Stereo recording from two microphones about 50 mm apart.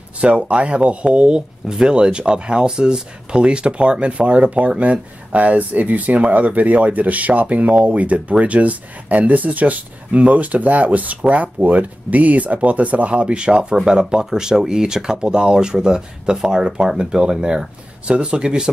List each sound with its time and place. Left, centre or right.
0.2 s speech: right